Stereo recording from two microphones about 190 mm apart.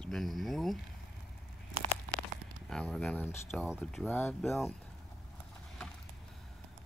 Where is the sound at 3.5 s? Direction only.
Centre (ahead or behind).